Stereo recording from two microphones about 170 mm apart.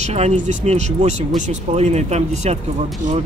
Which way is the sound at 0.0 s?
40° right (ahead or behind).